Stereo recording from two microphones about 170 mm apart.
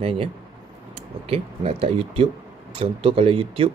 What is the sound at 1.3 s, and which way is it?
Speech, 35° right (ahead or behind).